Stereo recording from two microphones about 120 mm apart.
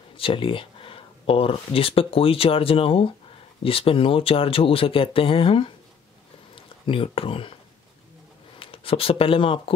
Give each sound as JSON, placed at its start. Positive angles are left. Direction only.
{"t": 0.2, "sound": "speech", "side_deg": 45}
{"t": 8.5, "sound": "speech", "side_deg": 50}